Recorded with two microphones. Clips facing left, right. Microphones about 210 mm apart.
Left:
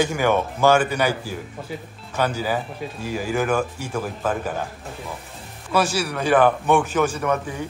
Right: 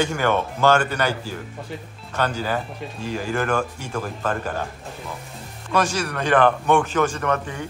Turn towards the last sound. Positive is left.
turn(degrees=5)  # may be behind; listen again after turning